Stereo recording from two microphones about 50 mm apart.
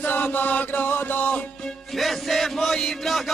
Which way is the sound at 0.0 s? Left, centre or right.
Left.